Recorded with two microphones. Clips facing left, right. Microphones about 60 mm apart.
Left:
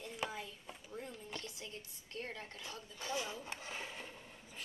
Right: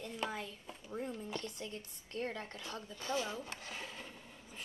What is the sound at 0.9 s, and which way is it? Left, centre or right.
Speech, centre.